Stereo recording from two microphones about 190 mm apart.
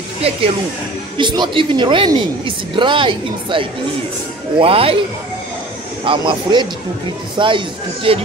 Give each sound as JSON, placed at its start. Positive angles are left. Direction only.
{"t": 1.1, "sound": "a woman's voice", "side_deg": -25}
{"t": 6.0, "sound": "a woman's voice", "side_deg": -25}